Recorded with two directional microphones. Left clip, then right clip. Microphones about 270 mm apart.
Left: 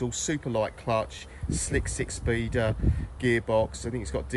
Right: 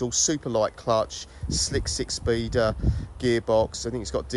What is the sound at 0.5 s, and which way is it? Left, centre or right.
Speech, right.